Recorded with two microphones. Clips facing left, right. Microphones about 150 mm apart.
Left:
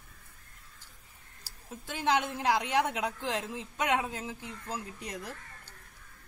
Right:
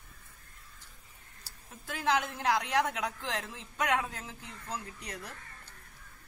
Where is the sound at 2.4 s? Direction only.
15° left (ahead or behind).